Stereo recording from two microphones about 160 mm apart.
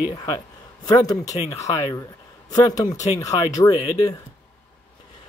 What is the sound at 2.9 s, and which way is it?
Speech, 45° left (ahead or behind).